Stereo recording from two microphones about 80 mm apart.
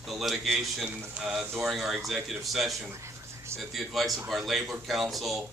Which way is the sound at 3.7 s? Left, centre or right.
Centre.